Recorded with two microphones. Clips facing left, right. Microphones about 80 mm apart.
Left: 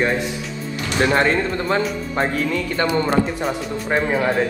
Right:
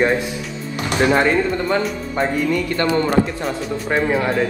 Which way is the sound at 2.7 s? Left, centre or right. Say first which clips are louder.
Even; left.